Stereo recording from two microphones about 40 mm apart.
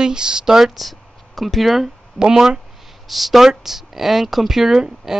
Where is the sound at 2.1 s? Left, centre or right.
Centre.